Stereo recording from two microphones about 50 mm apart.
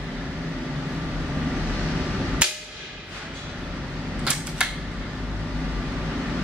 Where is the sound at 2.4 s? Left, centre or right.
Right.